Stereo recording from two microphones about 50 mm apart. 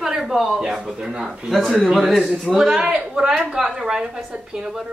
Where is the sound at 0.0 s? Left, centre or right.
Centre.